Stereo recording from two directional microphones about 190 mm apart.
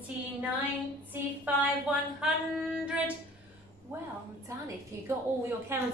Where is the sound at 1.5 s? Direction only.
10° right (ahead or behind).